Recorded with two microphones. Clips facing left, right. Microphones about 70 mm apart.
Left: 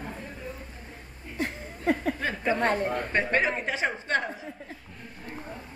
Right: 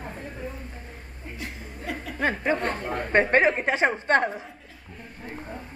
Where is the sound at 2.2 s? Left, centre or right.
Right.